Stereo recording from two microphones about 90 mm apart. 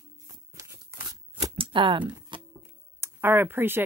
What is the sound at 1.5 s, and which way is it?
Shuffling cards, 75° right (ahead or behind).